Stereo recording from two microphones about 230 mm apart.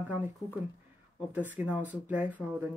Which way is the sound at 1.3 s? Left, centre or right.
Centre.